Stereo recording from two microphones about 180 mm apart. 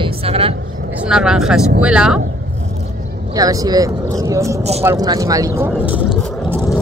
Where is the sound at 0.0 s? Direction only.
30° right (ahead or behind).